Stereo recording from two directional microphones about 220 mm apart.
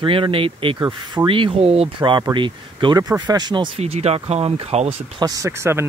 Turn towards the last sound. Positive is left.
turn(degrees=-10)  # may be behind; listen again after turning